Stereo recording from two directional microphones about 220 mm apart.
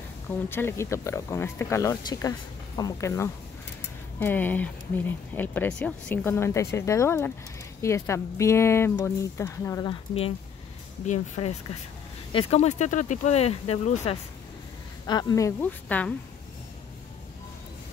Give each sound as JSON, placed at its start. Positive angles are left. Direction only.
{"t": 0.5, "sound": "speech", "side_deg": 10}